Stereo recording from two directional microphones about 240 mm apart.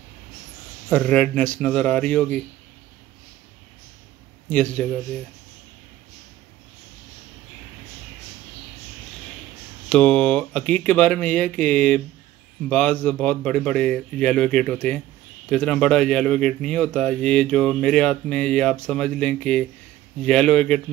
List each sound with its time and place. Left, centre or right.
0.8 s speech: centre
4.5 s speech: centre
9.8 s speech: centre